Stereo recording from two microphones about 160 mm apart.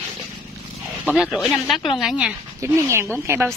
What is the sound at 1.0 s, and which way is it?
Speech, 5° right (ahead or behind).